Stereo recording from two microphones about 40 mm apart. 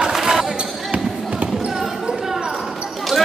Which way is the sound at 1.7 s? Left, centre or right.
Centre.